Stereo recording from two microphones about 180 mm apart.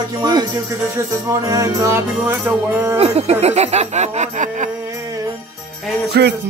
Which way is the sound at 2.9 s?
35° right (ahead or behind).